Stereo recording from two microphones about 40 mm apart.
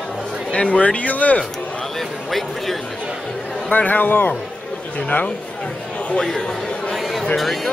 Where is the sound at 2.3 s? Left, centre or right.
Centre.